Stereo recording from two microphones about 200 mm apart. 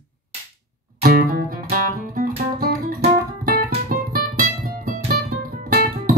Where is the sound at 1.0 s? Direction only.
45° right (ahead or behind).